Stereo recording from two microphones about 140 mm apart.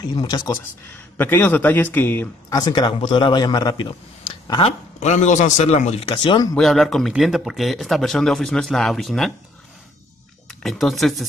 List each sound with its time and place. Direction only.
0.1 s a man's voice: 30° left (ahead or behind)
0.8 s speech: 15° left (ahead or behind)
2.5 s a man's voice: 30° left (ahead or behind)
4.6 s a man's voice: 50° left (ahead or behind)
6.0 s a man's voice: 35° left (ahead or behind)
6.5 s speech: 5° left (ahead or behind)
10.5 s speech: centre (ahead or behind)